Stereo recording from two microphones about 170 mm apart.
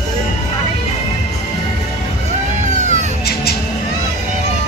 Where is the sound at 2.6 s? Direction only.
45° right (ahead or behind).